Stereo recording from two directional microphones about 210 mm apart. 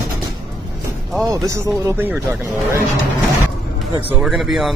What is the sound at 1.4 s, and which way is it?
Speech, 15° right (ahead or behind).